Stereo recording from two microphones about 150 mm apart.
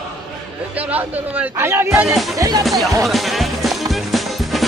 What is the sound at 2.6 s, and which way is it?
Speech, centre (ahead or behind).